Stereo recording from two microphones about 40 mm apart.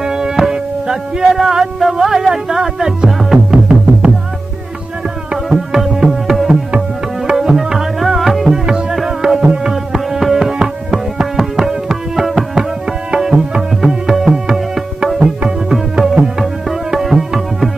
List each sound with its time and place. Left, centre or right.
0.0 s music: centre
5.5 s music: centre
7.2 s tabla: centre
9.4 s music: right
9.7 s music: centre
13.1 s tabla: centre
13.6 s music: centre
15.1 s tabla: right
15.7 s music: centre